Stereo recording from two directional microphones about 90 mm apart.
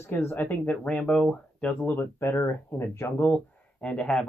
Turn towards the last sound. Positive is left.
turn(degrees=10)  # may be behind; listen again after turning